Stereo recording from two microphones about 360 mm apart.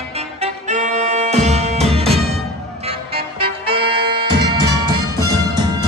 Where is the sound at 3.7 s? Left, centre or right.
Centre.